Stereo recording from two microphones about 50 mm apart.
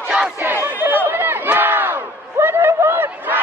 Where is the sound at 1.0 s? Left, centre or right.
Right.